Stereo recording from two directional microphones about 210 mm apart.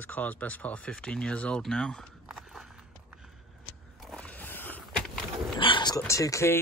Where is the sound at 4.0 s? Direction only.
5° left (ahead or behind).